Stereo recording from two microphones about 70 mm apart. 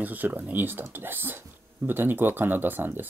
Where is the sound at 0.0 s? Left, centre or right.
Right.